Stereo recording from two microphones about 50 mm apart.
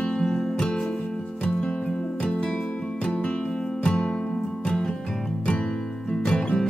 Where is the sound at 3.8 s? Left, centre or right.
Centre.